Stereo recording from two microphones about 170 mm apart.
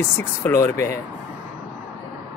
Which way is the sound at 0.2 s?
15° left (ahead or behind).